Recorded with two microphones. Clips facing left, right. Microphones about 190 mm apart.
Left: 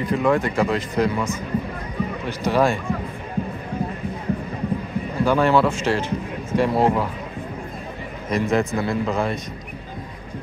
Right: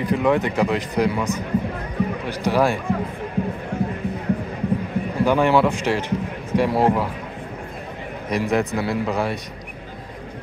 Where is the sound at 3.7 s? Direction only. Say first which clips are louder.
Right 2 dB; 90° right.